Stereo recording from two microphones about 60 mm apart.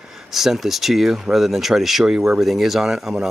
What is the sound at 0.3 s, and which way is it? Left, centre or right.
Speech, centre.